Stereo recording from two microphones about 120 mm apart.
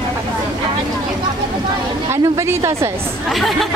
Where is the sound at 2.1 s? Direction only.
25° right (ahead or behind).